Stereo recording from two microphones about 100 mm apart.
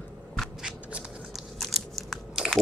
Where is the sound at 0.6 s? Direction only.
10° right (ahead or behind).